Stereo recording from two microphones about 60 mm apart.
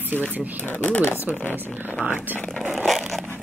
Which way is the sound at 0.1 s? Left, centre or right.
Left.